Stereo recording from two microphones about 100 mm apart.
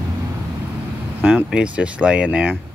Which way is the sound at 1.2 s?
15° right (ahead or behind).